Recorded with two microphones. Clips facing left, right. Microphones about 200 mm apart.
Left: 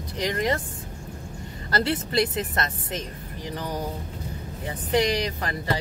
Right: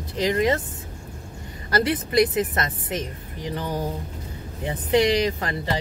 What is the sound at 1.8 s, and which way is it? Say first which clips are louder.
Speech: right 5 dB; 20° right (ahead or behind).